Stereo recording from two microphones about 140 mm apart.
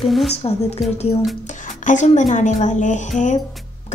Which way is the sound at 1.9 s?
60° left (ahead or behind).